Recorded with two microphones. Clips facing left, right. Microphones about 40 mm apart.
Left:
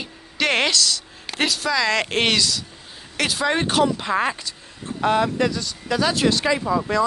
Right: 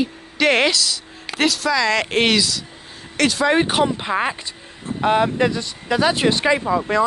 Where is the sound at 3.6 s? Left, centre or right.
Right.